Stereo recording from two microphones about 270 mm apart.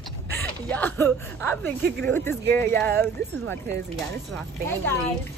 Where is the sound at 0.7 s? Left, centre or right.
Centre.